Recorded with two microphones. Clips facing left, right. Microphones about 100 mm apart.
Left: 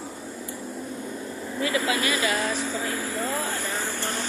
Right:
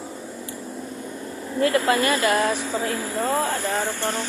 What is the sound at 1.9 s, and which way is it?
Speech, 50° right (ahead or behind).